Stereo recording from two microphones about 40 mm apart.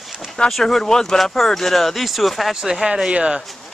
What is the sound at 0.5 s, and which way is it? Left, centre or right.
Speech, centre.